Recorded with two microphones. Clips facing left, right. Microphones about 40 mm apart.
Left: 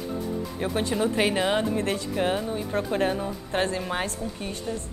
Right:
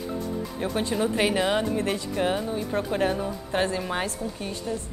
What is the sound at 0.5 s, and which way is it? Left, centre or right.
Speech, centre.